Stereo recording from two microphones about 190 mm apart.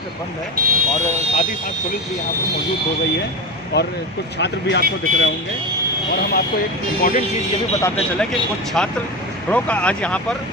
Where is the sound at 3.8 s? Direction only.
60° left (ahead or behind).